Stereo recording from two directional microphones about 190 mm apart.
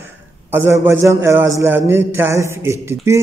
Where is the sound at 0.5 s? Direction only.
10° right (ahead or behind).